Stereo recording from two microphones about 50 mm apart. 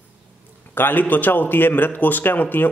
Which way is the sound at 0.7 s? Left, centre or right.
Left.